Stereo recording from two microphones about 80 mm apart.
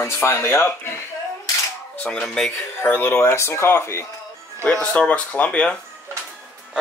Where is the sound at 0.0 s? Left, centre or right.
Left.